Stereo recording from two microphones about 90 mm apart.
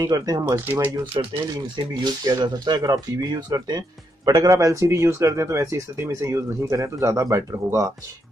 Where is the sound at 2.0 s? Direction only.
45° right (ahead or behind).